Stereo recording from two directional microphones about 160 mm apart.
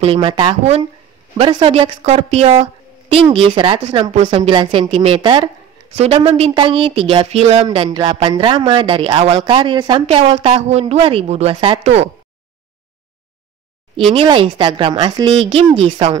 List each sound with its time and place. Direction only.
0.0 s speech: 35° right (ahead or behind)
13.9 s speech: 35° right (ahead or behind)